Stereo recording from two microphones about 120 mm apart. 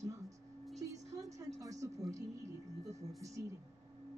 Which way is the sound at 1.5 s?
30° right (ahead or behind).